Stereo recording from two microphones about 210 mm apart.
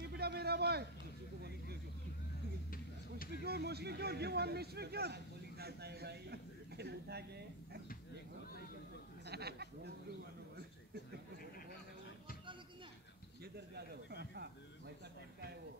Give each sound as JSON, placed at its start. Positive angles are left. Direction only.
{"t": 0.0, "sound": "a sound", "side_deg": -50}
{"t": 3.4, "sound": "speech", "side_deg": -50}
{"t": 9.2, "sound": "chatter", "side_deg": -50}
{"t": 13.7, "sound": "speech", "side_deg": -50}